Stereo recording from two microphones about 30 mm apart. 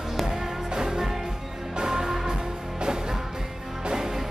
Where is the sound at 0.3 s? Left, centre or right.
Centre.